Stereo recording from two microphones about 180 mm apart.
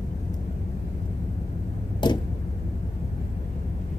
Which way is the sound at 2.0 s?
25° left (ahead or behind).